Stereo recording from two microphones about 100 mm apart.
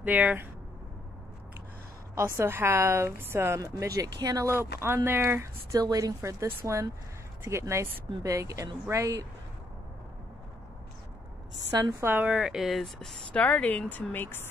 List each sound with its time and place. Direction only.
0.0 s speech: 15° right (ahead or behind)
2.1 s speech: 25° right (ahead or behind)
4.5 s speech: 25° right (ahead or behind)
5.8 s a woman's voice: 40° right (ahead or behind)
11.7 s a woman's voice: 35° right (ahead or behind)
12.1 s speech: 20° right (ahead or behind)
12.4 s speech: centre (ahead or behind)
13.3 s speech: 15° left (ahead or behind)